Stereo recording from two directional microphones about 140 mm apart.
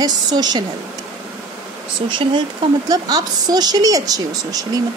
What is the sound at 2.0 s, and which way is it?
A woman's voice, 35° right (ahead or behind).